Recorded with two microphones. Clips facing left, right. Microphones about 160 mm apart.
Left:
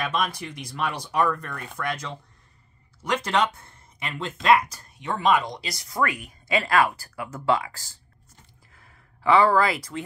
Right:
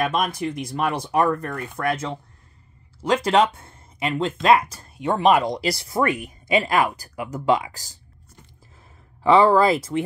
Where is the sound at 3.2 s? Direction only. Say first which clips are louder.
Right 6 dB; 30° right (ahead or behind).